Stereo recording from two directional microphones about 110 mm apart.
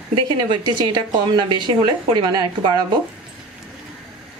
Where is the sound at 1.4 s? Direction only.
45° right (ahead or behind).